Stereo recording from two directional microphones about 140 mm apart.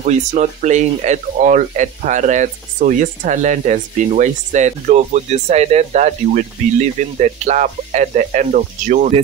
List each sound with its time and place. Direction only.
0.0 s speech: 55° right (ahead or behind)